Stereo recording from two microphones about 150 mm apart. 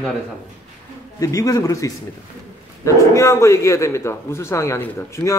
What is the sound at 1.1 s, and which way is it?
A man's voice, 25° left (ahead or behind).